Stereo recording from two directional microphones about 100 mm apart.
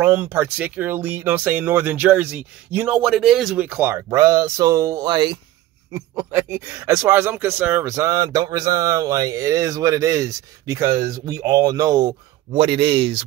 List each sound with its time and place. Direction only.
0.0 s speech: 20° right (ahead or behind)
2.9 s speech: 5° right (ahead or behind)
3.5 s speech: 15° right (ahead or behind)
4.1 s speech: 35° right (ahead or behind)
5.0 s speech: 50° right (ahead or behind)
5.9 s speech: 25° right (ahead or behind); by 12.2 s 40° right (ahead or behind)
12.5 s speech: 65° right (ahead or behind)